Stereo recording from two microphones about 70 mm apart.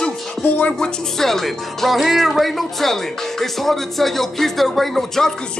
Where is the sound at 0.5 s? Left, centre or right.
Left.